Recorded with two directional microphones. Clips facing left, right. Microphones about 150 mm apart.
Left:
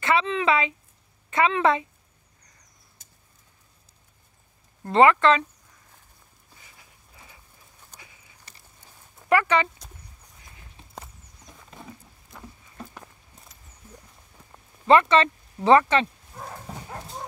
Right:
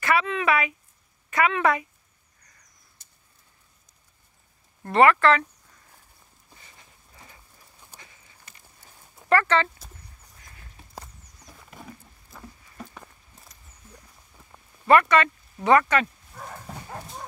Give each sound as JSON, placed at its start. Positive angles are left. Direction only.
{"t": 0.0, "sound": "a woman's voice", "side_deg": 25}
{"t": 4.8, "sound": "a woman's voice", "side_deg": 20}
{"t": 6.6, "sound": "a sound", "side_deg": 10}
{"t": 8.8, "sound": "a sound", "side_deg": -5}
{"t": 9.3, "sound": "speech", "side_deg": 15}
{"t": 10.4, "sound": "walk", "side_deg": 15}
{"t": 11.0, "sound": "a sound", "side_deg": 0}
{"t": 14.9, "sound": "speech", "side_deg": 25}
{"t": 16.4, "sound": "dog", "side_deg": 5}